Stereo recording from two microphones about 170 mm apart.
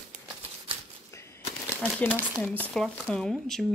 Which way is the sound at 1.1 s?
15° left (ahead or behind).